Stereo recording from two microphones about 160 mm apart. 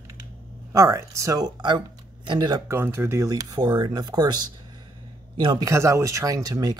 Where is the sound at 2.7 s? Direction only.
15° right (ahead or behind).